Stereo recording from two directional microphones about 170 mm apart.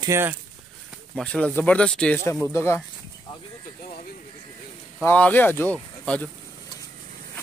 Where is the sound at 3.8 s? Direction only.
55° left (ahead or behind).